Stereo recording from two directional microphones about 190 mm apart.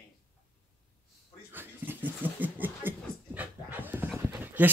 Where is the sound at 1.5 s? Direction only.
10° right (ahead or behind).